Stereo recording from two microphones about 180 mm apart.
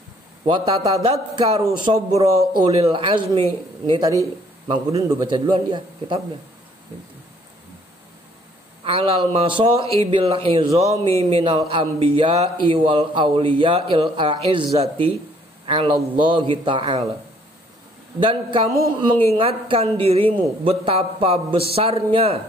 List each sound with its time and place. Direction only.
0.5 s a man's voice: 20° right (ahead or behind)
2.1 s a man's voice: 30° right (ahead or behind)
8.8 s a man's voice: 30° right (ahead or behind)
18.2 s a man's voice: 30° right (ahead or behind)